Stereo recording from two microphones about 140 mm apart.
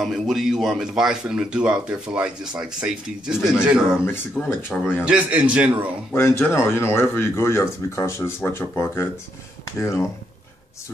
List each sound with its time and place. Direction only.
0.0 s a man's voice: centre (ahead or behind)
4.0 s speech: 15° left (ahead or behind)
5.0 s a man's voice: 10° right (ahead or behind)
6.1 s speech: 15° left (ahead or behind)